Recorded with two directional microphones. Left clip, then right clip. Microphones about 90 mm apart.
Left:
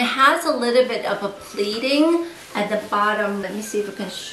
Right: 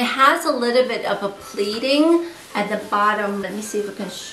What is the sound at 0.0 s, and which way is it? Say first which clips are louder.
A woman's voice: right 1 dB; 15° right (ahead or behind).